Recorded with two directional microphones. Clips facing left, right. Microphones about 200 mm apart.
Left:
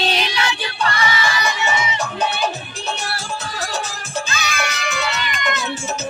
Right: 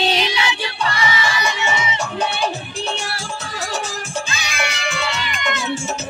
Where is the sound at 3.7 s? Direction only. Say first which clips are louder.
Right 3 dB; 25° right (ahead or behind).